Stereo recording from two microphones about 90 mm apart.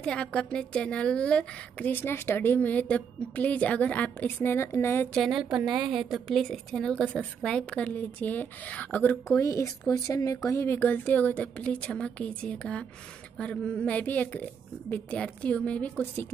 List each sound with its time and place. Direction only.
0.0 s a woman's voice: 10° left (ahead or behind); by 5.0 s 25° left (ahead or behind)
5.3 s a woman's voice: 10° right (ahead or behind); by 9.4 s 20° left (ahead or behind)
9.4 s a woman's voice: 35° left (ahead or behind); by 15.9 s 15° left (ahead or behind)